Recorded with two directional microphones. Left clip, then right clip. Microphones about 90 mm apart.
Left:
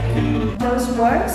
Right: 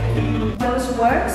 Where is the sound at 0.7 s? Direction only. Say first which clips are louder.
Left 1 dB; 15° left (ahead or behind).